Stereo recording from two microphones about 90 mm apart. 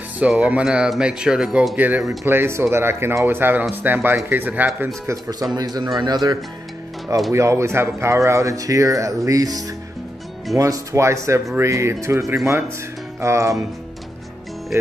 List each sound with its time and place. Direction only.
0.3 s speech: 15° right (ahead or behind)
1.8 s speech: 20° right (ahead or behind)
5.6 s speech: 45° right (ahead or behind)
7.3 s speech: 30° right (ahead or behind)